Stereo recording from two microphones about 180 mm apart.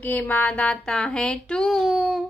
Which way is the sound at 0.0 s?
10° left (ahead or behind).